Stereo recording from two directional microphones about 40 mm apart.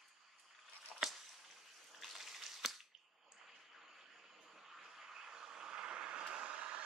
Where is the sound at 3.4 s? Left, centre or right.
Centre.